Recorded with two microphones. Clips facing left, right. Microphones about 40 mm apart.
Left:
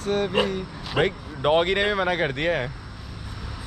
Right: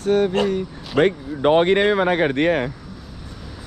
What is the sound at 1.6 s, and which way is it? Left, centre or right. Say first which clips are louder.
Speech: right 6 dB; right.